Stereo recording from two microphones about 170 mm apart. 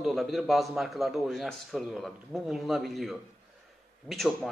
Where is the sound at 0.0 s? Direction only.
Centre (ahead or behind).